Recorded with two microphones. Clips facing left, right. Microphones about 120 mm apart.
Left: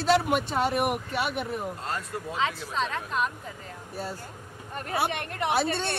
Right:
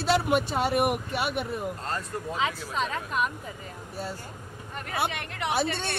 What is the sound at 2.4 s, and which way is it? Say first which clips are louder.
Speech: left 1 dB; 10° right (ahead or behind).